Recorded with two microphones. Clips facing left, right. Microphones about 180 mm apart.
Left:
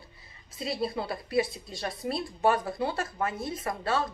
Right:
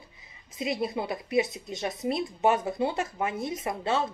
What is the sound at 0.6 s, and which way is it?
Speech, 20° right (ahead or behind).